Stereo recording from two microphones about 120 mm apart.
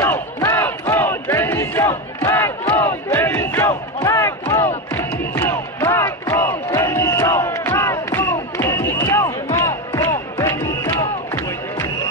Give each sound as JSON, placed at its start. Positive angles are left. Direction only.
{"t": 0.0, "sound": "battle cry", "side_deg": 20}